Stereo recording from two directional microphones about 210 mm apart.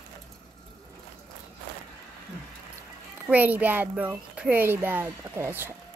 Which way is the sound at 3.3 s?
5° right (ahead or behind).